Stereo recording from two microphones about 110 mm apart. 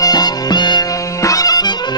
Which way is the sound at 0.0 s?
40° left (ahead or behind).